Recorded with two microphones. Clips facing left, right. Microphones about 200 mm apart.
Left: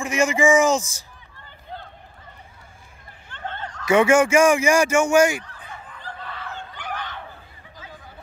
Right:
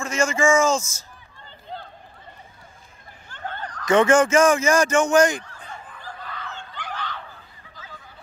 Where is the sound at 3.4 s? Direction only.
25° left (ahead or behind).